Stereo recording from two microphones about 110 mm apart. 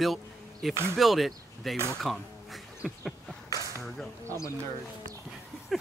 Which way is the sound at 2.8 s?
5° right (ahead or behind).